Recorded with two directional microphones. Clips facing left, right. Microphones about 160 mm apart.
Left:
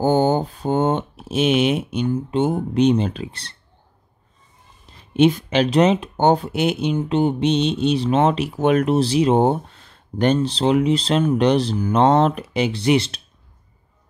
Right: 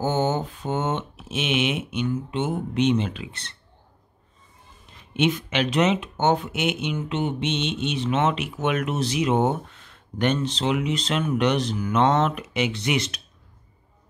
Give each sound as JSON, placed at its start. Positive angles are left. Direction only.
{"t": 0.0, "sound": "speech", "side_deg": 35}
{"t": 4.8, "sound": "speech", "side_deg": 35}